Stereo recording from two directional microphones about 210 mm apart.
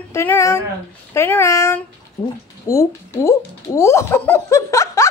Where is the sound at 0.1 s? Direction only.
10° left (ahead or behind).